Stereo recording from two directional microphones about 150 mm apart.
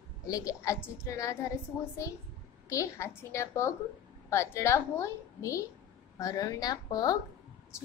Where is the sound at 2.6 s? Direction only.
20° left (ahead or behind).